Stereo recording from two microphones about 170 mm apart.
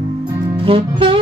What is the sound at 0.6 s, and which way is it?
Music, 30° right (ahead or behind).